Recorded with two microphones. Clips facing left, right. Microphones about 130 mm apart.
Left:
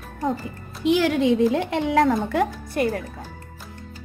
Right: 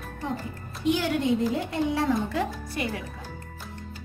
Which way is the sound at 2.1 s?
55° left (ahead or behind).